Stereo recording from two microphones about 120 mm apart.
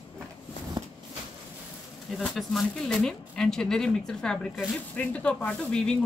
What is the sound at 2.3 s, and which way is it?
Speech, centre (ahead or behind).